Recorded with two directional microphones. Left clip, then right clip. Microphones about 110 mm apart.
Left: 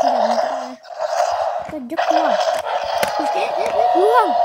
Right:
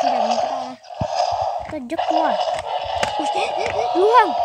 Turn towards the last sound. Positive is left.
turn(degrees=-30)  # may be behind; listen again after turning